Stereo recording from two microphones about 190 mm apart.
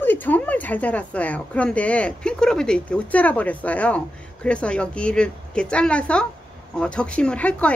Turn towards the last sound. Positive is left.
turn(degrees=5)  # may be behind; listen again after turning